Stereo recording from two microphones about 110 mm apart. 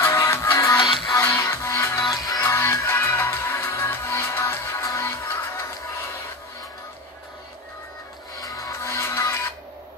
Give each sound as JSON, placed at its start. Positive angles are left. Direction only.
{"t": 0.0, "sound": "music", "side_deg": 25}
{"t": 8.4, "sound": "music", "side_deg": 35}